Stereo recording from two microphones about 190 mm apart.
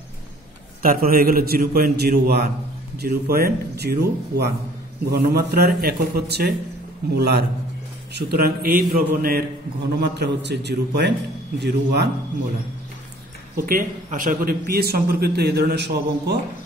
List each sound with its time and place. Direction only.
0.8 s a man's voice: 50° right (ahead or behind)
9.9 s a man's voice: 60° right (ahead or behind)
13.6 s a man's voice: 50° right (ahead or behind)